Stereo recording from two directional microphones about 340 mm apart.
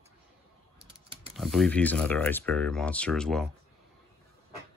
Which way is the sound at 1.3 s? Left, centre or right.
Centre.